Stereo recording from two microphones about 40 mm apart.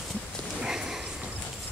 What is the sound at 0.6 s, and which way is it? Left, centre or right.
Sniff, centre.